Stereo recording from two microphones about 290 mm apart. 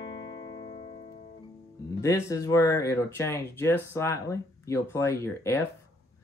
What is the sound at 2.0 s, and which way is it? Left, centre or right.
Speech, centre.